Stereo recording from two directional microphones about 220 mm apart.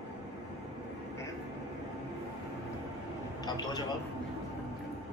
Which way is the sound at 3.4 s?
20° left (ahead or behind).